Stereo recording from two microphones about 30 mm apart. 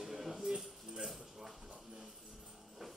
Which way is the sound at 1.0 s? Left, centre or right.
Centre.